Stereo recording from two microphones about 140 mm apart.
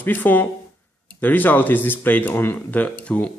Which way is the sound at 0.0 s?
10° left (ahead or behind).